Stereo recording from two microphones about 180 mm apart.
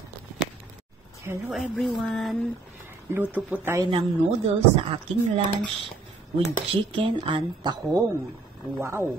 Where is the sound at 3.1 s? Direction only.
10° right (ahead or behind).